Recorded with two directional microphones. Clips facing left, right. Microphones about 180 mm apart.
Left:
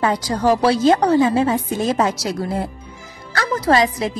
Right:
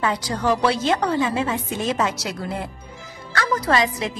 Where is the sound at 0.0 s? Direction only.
40° left (ahead or behind).